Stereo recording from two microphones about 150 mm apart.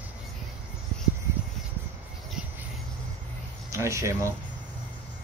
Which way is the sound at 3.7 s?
20° right (ahead or behind).